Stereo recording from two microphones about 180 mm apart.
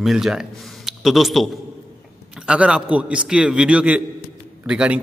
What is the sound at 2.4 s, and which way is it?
A man's voice, 5° right (ahead or behind).